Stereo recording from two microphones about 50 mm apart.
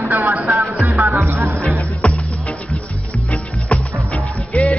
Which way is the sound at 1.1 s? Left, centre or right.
Right.